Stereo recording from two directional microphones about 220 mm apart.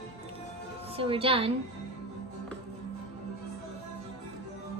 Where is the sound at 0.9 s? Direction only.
25° right (ahead or behind).